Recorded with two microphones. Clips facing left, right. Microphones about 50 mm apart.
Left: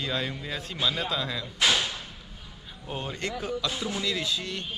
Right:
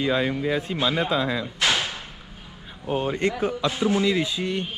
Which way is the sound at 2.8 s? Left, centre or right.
Right.